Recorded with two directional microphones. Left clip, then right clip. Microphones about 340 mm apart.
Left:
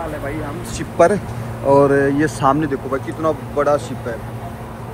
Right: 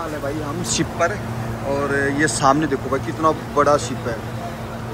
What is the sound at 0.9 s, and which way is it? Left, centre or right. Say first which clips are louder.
Speech: left 12 dB; centre.